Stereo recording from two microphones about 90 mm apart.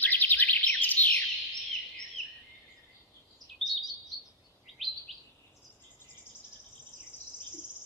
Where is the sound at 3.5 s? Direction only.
Centre (ahead or behind).